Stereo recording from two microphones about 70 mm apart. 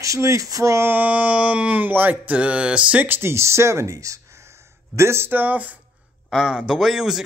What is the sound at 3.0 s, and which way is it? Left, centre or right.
Speech, right.